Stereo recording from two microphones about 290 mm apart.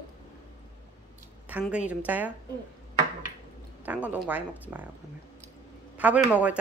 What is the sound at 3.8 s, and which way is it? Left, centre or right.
Speech, centre.